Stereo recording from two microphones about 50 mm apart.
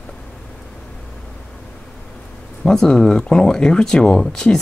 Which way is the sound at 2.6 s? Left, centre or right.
Centre.